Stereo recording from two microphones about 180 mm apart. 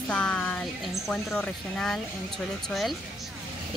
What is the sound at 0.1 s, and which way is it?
Speech, 5° left (ahead or behind).